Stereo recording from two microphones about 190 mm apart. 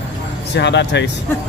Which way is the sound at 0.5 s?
65° left (ahead or behind).